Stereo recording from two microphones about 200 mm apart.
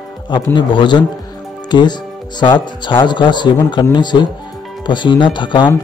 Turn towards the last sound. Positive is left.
turn(degrees=25)  # may be behind; listen again after turning